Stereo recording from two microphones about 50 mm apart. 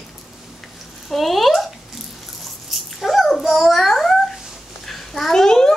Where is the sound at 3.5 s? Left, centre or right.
Centre.